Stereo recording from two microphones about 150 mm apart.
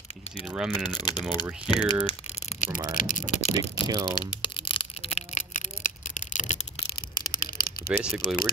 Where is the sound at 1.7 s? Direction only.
5° right (ahead or behind).